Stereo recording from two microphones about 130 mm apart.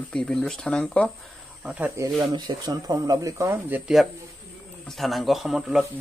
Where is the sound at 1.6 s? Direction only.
5° right (ahead or behind).